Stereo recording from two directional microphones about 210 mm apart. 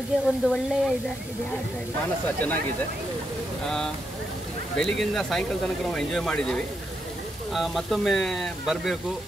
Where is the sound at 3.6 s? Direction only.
5° left (ahead or behind).